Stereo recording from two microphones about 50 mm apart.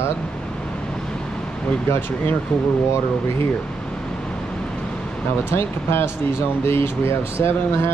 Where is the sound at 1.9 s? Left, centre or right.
Left.